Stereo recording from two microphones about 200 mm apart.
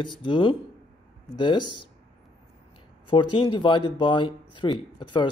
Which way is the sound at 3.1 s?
25° left (ahead or behind).